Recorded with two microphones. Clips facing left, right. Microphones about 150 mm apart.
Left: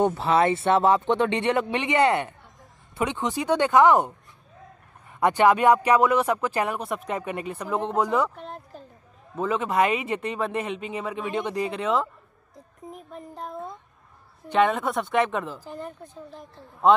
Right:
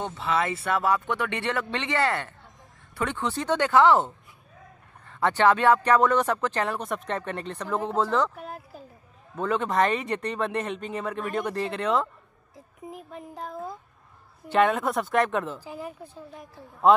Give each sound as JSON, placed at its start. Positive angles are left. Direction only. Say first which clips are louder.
{"t": 0.3, "sound": "speech", "louder": "left 3 dB", "side_deg": 40}
{"t": 0.7, "sound": "speech", "louder": "left 5 dB", "side_deg": 25}
{"t": 8.4, "sound": "a sound", "louder": "even", "side_deg": -5}
{"t": 9.3, "sound": "speech", "louder": "left 1 dB", "side_deg": 0}
{"t": 12.5, "sound": "a sound", "louder": "right 1 dB", "side_deg": -5}
{"t": 14.4, "sound": "speech", "louder": "even", "side_deg": 0}